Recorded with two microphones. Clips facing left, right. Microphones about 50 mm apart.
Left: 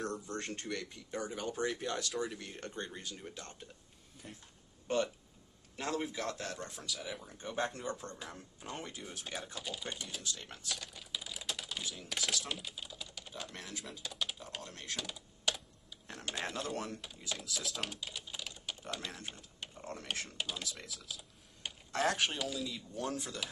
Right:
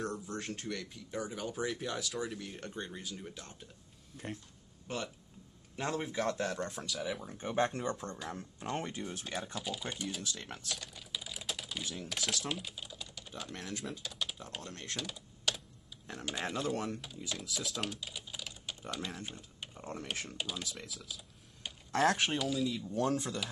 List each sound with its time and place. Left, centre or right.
0.0 s speech: centre
4.2 s speech: right
4.8 s speech: centre
5.8 s a man's voice: centre
7.5 s speech: right
9.2 s speech: centre
10.7 s typing: centre
12.0 s speech: centre
16.1 s speech: centre
16.7 s speech: right
17.0 s speech: centre
19.3 s a sound: centre
20.1 s speech: centre